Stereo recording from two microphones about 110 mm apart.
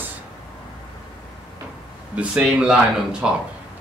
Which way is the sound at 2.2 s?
10° right (ahead or behind).